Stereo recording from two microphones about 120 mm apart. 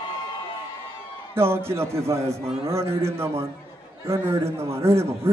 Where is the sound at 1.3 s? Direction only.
20° right (ahead or behind).